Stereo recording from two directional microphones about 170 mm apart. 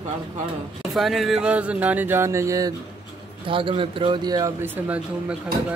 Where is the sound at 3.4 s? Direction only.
30° right (ahead or behind).